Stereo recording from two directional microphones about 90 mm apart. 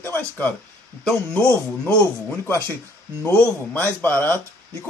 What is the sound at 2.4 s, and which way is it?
Speech, 30° left (ahead or behind).